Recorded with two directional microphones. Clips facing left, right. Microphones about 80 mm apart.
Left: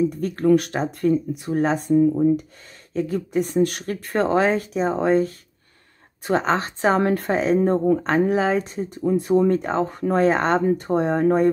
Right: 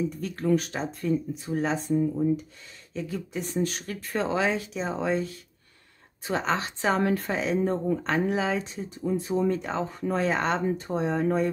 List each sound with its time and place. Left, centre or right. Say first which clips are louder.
0.1 s speech: left 8 dB; left
0.5 s speech: left 7 dB; left